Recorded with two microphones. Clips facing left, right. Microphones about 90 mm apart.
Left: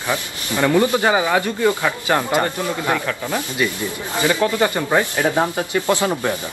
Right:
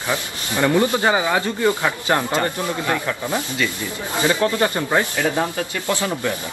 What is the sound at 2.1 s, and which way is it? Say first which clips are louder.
Speech: left 2 dB; 20° left (ahead or behind).